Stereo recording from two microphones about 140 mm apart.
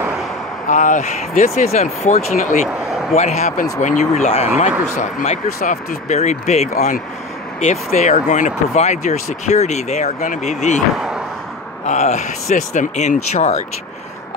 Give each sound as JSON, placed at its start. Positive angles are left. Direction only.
{"t": 0.7, "sound": "speech", "side_deg": 65}
{"t": 11.0, "sound": "a sound", "side_deg": -5}
{"t": 11.8, "sound": "speech", "side_deg": 55}